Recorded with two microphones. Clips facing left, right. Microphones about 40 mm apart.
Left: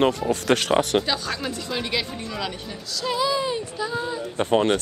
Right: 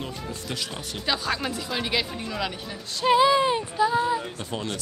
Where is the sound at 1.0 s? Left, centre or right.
Centre.